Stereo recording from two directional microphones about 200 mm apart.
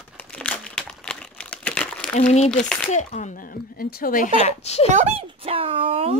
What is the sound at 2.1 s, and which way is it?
Speech, 35° left (ahead or behind).